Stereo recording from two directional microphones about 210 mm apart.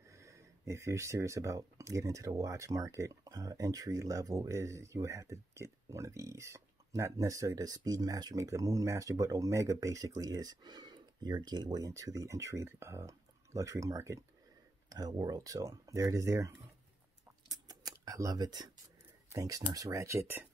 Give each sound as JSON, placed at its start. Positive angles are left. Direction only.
{"t": 0.1, "sound": "speech", "side_deg": -15}
{"t": 17.5, "sound": "a sound", "side_deg": -20}
{"t": 19.3, "sound": "speech", "side_deg": -15}